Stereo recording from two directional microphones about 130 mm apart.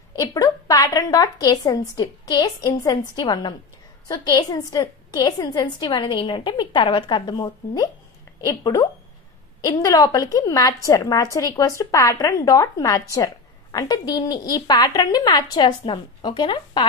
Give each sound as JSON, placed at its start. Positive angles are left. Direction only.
{"t": 0.2, "sound": "a woman's voice", "side_deg": 30}